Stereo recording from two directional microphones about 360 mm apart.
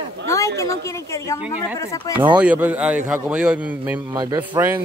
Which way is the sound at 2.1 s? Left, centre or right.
Centre.